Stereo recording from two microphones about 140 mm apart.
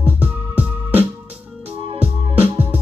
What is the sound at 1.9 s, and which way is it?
Music, 45° right (ahead or behind).